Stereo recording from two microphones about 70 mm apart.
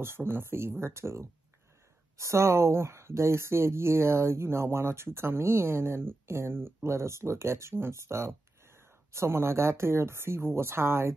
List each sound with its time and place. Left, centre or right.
0.0 s speech: right